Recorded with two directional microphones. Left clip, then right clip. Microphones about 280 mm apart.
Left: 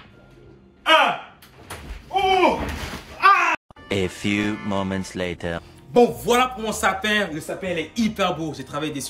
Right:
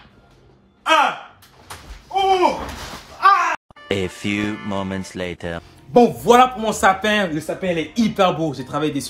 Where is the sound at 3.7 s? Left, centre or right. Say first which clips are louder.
Right 2 dB; centre.